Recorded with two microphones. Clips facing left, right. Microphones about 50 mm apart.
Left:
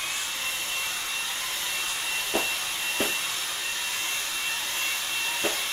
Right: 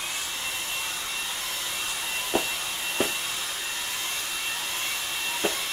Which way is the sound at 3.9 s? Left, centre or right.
Left.